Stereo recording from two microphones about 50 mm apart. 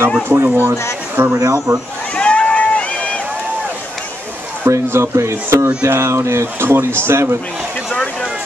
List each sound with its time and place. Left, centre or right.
0.3 s speech: right
1.4 s speech: right
2.1 s run: left
4.6 s speech: right